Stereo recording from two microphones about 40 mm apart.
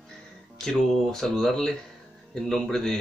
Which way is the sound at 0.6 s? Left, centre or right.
Centre.